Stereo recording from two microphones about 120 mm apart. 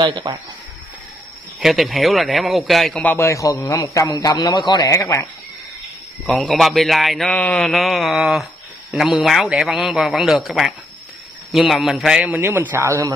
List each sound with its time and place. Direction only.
0.0 s speech: 40° right (ahead or behind)
1.6 s speech: centre (ahead or behind)
3.0 s a man's voice: 15° left (ahead or behind); by 4.9 s 35° left (ahead or behind)
4.9 s a man's voice: 25° left (ahead or behind)
6.3 s speech: centre (ahead or behind)
12.3 s a man's voice: 15° right (ahead or behind)